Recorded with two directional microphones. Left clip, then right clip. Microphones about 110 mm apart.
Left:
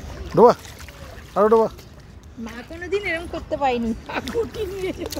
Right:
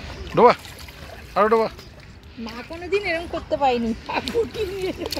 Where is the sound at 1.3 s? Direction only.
45° left (ahead or behind).